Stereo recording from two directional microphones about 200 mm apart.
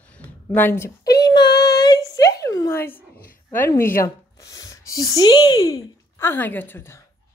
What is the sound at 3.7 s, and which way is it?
A woman's voice, 15° left (ahead or behind).